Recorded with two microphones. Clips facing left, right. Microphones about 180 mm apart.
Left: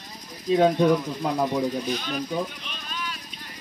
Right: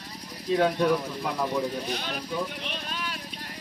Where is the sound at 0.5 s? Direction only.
20° left (ahead or behind).